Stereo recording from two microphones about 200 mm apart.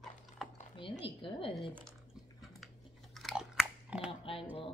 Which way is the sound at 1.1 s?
25° left (ahead or behind).